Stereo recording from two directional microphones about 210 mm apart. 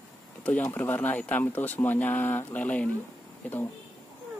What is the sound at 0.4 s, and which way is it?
Speech, 10° left (ahead or behind).